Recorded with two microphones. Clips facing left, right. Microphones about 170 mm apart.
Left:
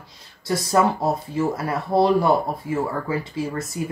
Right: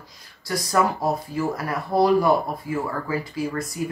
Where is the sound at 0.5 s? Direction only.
25° left (ahead or behind).